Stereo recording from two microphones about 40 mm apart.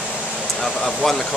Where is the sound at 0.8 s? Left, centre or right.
Centre.